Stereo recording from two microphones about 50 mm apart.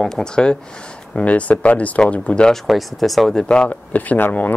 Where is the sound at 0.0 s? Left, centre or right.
Centre.